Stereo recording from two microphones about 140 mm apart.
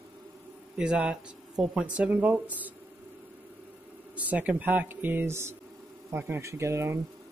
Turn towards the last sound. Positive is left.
turn(degrees=-20)  # may be behind; listen again after turning